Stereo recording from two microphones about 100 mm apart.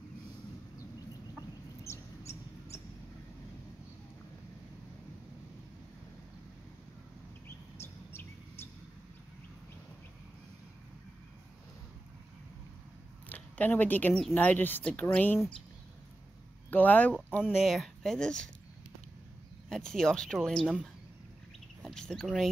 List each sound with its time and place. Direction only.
1.9 s mouse: 30° left (ahead or behind)
7.4 s chirp: 25° left (ahead or behind)
13.3 s speech: 15° left (ahead or behind)
16.7 s speech: 15° left (ahead or behind)
17.4 s speech: centre (ahead or behind)
19.7 s speech: 5° left (ahead or behind)
21.8 s speech: 5° left (ahead or behind)